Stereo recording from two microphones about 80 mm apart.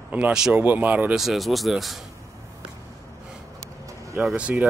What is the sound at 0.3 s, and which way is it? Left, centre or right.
Speech, centre.